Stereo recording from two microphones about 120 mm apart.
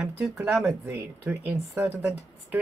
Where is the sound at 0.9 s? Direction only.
20° right (ahead or behind).